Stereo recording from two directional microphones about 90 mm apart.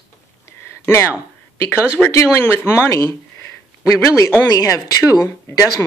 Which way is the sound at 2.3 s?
25° left (ahead or behind).